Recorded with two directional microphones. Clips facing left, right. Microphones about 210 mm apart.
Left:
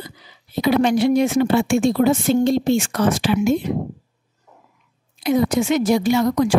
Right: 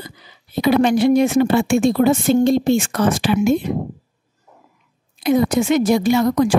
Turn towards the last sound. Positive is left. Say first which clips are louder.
# right 2 dB
turn(degrees=-50)  # may be behind; listen again after turning